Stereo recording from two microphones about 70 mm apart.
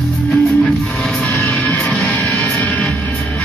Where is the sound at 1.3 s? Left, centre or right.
Centre.